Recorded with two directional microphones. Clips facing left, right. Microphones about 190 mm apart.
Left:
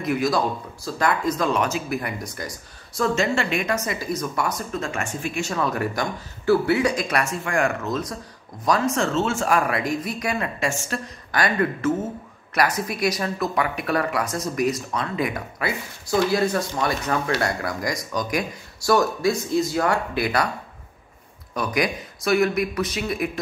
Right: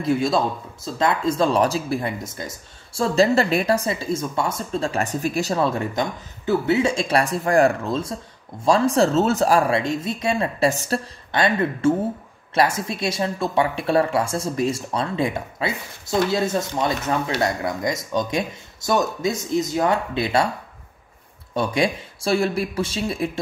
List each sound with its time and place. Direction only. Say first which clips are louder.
0.0 s speech: right 2 dB; 30° right (ahead or behind)
11.3 s speech: right 2 dB; 25° right (ahead or behind)
21.5 s speech: right 3 dB; 30° right (ahead or behind)